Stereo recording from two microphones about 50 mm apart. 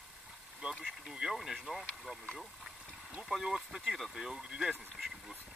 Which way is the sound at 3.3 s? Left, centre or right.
Centre.